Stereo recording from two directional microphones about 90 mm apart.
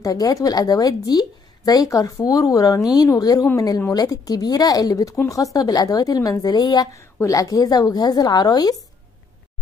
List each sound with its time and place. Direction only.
0.0 s a woman's voice: 40° left (ahead or behind)
6.9 s a woman's voice: 35° left (ahead or behind)